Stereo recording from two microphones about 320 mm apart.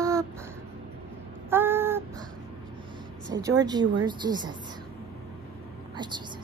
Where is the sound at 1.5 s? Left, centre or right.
Centre.